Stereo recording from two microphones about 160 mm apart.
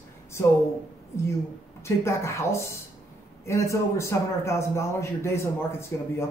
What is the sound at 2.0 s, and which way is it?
Speech, 15° left (ahead or behind).